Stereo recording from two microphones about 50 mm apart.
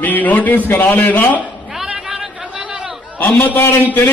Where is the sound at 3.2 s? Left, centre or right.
Left.